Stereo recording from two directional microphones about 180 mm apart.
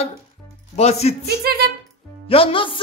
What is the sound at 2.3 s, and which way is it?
Speech, 30° left (ahead or behind).